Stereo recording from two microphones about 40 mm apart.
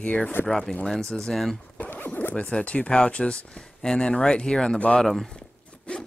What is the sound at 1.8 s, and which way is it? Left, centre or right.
Zipper, left.